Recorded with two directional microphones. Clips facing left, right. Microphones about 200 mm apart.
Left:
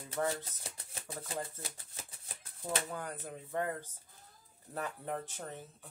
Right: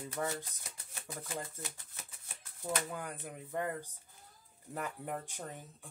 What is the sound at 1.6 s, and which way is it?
Shuffling cards, 30° left (ahead or behind).